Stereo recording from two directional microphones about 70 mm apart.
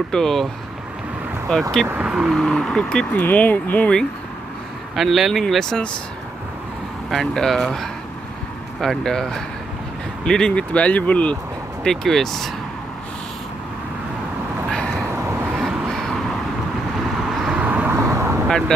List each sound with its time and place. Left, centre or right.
0.1 s speech: centre
1.5 s speech: centre
2.0 s speech: centre
2.3 s speech: centre
3.2 s speech: left
4.9 s speech: centre
7.1 s speech: centre
10.7 s speech: left
11.8 s speech: centre
15.9 s vehicle: centre
17.3 s vehicle: centre
17.6 s vehicle: right
17.9 s vehicle: right